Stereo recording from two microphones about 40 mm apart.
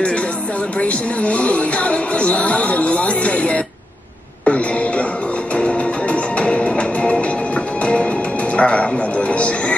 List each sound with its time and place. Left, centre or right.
0.7 s speech: left
4.5 s a sound: left
5.5 s music: left